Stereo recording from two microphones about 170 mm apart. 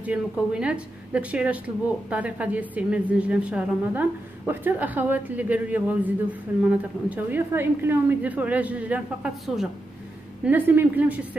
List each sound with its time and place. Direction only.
0.0 s a woman's voice: 5° right (ahead or behind)